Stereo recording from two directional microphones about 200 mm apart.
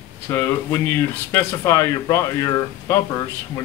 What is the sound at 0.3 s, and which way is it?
Speech, 15° left (ahead or behind).